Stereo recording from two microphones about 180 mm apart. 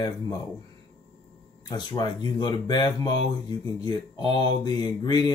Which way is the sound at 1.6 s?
25° left (ahead or behind).